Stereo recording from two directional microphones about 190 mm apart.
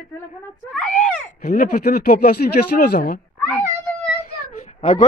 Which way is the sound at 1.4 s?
45° left (ahead or behind).